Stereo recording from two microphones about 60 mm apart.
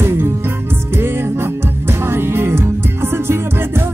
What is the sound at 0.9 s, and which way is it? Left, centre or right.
Music, right.